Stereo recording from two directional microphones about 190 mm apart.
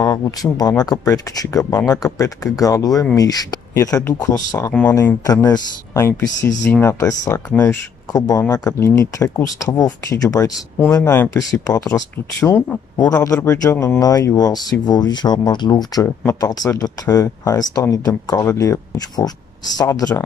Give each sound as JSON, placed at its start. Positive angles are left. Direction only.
{"t": 0.0, "sound": "speech", "side_deg": 20}